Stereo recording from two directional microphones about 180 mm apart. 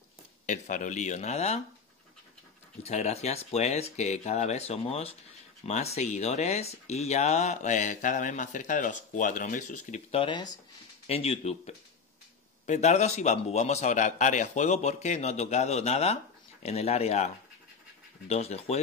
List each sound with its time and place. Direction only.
0.5 s a man's voice: 45° left (ahead or behind)
2.8 s a man's voice: 35° left (ahead or behind)
10.2 s speech: 25° left (ahead or behind)
11.1 s a man's voice: 35° left (ahead or behind)
18.3 s a man's voice: 35° left (ahead or behind)